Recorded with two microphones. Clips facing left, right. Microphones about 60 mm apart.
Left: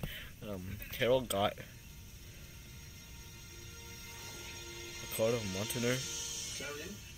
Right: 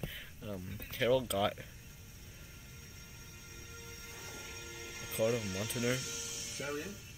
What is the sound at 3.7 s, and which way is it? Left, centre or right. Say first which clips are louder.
Music: right 2 dB; right.